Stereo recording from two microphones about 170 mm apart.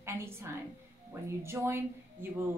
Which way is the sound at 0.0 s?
15° right (ahead or behind).